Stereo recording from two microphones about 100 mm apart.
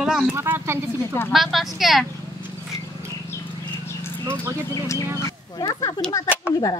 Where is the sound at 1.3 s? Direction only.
Centre (ahead or behind).